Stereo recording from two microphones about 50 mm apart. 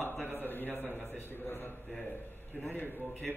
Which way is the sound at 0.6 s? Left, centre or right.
Right.